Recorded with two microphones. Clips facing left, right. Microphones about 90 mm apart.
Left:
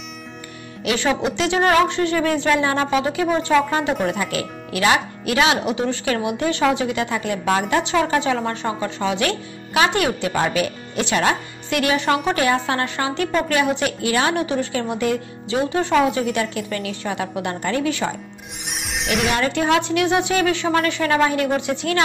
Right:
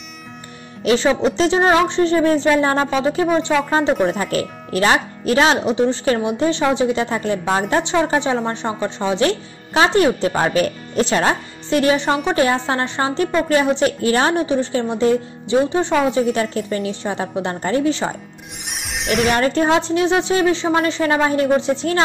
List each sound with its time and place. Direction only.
0.8 s a woman's voice: 30° right (ahead or behind)
18.8 s a sound: centre (ahead or behind)
19.3 s speech: 35° right (ahead or behind)